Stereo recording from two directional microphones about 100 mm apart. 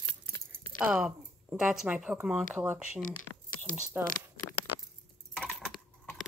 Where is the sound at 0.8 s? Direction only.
10° right (ahead or behind).